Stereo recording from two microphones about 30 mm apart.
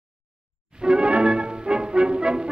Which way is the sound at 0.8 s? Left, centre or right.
Right.